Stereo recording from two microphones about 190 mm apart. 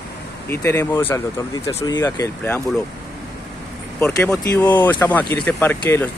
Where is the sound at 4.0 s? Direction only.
15° left (ahead or behind).